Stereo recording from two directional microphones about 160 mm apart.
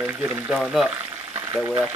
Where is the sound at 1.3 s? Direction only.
20° right (ahead or behind).